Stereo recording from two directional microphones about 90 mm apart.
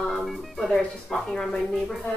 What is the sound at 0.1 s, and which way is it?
Speech, centre (ahead or behind).